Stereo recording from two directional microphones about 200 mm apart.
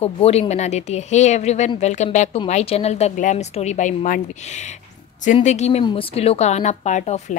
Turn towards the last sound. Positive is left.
turn(degrees=35)  # may be behind; listen again after turning